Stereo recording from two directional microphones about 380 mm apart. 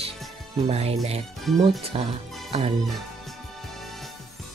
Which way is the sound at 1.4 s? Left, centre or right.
Centre.